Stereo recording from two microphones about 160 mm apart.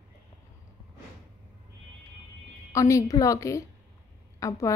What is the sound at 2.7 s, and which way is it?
A woman's voice, 20° left (ahead or behind).